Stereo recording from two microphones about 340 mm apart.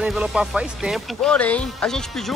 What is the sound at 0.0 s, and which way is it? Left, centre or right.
Speech, centre.